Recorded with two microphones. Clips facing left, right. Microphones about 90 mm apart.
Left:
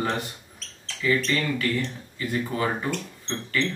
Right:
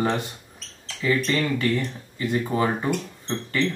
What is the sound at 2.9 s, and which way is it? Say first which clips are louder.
Speech: right 4 dB; 15° right (ahead or behind).